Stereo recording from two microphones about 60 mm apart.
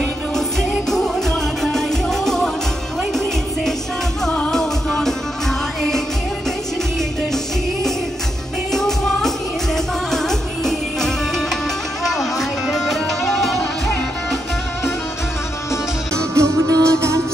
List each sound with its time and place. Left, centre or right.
0.6 s music: centre
4.3 s music: centre
8.7 s music: centre
16.3 s music: right